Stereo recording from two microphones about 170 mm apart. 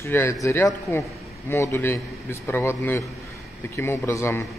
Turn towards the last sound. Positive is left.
turn(degrees=15)  # may be behind; listen again after turning